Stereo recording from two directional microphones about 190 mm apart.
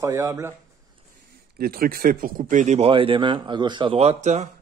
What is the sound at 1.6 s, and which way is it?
Speech, 50° right (ahead or behind).